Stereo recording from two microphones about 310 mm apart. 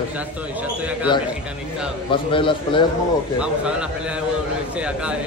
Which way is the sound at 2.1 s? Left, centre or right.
Centre.